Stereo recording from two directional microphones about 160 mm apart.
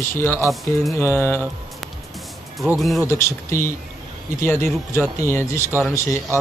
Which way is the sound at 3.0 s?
15° left (ahead or behind).